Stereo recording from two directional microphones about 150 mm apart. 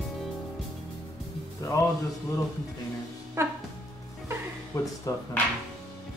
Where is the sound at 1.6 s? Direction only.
20° left (ahead or behind).